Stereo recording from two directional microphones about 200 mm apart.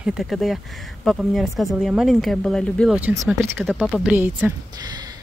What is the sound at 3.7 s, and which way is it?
Speech, centre (ahead or behind).